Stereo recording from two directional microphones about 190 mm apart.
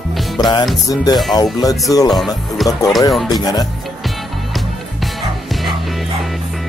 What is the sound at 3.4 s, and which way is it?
Speech, 20° left (ahead or behind).